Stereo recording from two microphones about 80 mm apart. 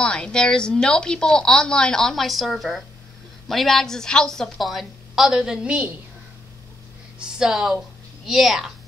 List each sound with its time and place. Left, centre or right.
0.0 s a woman's voice: centre
7.2 s a woman's voice: centre